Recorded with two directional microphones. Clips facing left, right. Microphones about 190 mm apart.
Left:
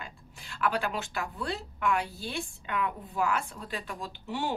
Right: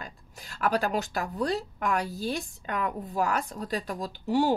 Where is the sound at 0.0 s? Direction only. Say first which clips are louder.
Right 2 dB; 40° right (ahead or behind).